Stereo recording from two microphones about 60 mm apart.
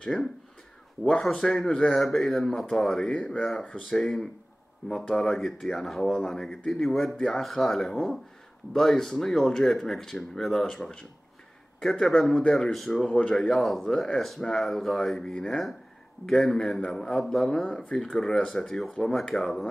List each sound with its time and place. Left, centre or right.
0.0 s speech: centre
3.1 s speech: centre
13.1 s speech: left
13.4 s speech: centre